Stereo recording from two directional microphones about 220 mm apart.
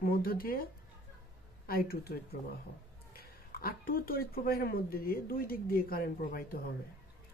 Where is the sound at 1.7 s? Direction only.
45° left (ahead or behind).